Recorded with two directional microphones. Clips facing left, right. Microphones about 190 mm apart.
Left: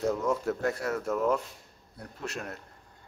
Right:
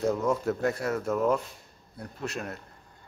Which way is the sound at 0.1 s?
20° right (ahead or behind).